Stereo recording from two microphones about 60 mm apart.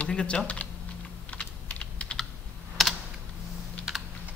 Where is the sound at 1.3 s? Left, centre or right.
Centre.